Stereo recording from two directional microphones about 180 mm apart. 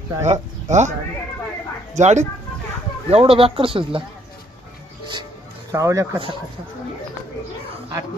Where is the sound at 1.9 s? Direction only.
40° right (ahead or behind).